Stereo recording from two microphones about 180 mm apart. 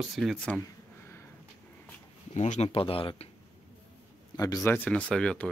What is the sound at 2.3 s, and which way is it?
Speech, 40° left (ahead or behind).